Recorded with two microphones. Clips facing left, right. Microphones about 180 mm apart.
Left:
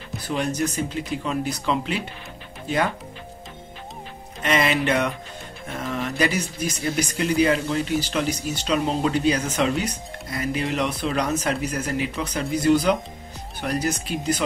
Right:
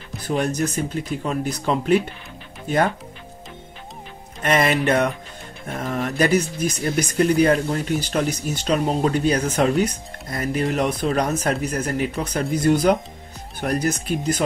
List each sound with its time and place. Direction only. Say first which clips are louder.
0.3 s speech: right 3 dB; 45° right (ahead or behind)
4.4 s speech: right 2 dB; 50° right (ahead or behind)